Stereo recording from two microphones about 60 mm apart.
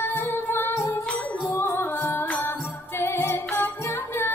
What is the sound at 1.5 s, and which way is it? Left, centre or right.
Music, left.